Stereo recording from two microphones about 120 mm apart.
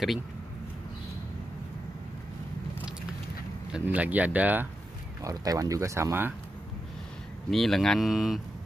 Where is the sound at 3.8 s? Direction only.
15° right (ahead or behind).